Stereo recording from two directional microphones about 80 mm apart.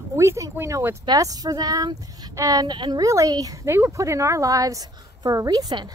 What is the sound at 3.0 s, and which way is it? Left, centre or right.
Speech, right.